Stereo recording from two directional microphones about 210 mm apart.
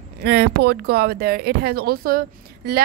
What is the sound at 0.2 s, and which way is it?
Speech, 50° right (ahead or behind).